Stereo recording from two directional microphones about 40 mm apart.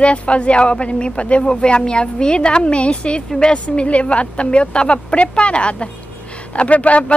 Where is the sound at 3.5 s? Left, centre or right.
Left.